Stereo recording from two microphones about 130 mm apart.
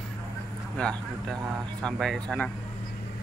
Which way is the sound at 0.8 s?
5° left (ahead or behind).